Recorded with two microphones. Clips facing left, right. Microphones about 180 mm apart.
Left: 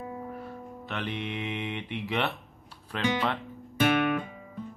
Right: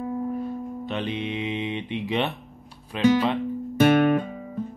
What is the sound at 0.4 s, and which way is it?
Music, 20° right (ahead or behind).